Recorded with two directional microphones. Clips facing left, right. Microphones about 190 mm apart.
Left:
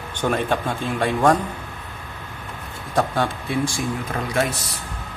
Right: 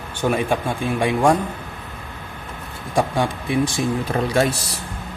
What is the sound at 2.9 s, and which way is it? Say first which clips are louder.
Speech: right 1 dB; 15° right (ahead or behind).